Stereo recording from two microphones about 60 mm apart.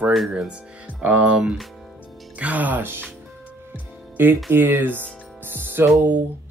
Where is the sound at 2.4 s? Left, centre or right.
Right.